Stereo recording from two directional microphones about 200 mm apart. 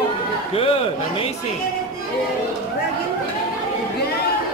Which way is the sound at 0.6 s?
30° left (ahead or behind).